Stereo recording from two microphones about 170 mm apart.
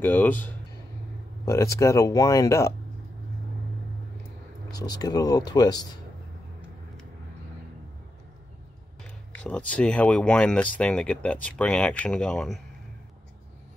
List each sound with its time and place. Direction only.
0.0 s speech: 10° left (ahead or behind)
4.7 s speech: 20° left (ahead or behind)
9.3 s speech: 10° left (ahead or behind)